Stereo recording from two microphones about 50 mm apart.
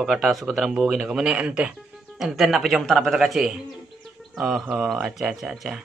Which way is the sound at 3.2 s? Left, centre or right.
Centre.